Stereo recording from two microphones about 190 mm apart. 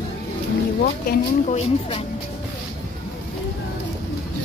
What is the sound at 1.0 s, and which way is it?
A woman's voice, 35° left (ahead or behind).